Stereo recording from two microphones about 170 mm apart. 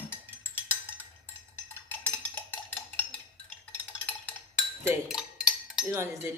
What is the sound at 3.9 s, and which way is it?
Percussion, 10° left (ahead or behind).